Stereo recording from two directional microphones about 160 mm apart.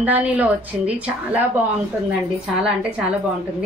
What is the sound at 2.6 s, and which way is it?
Speech, 5° right (ahead or behind).